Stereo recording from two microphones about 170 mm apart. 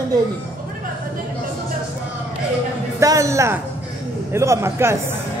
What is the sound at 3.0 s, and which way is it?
A man's voice, 20° right (ahead or behind).